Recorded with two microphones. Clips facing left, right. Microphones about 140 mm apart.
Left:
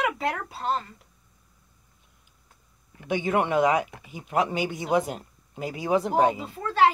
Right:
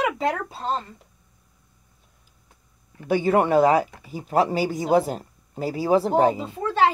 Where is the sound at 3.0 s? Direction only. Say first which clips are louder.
Right 5 dB; 40° right (ahead or behind).